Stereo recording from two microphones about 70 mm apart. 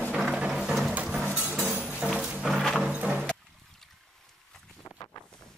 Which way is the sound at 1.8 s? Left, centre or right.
Centre.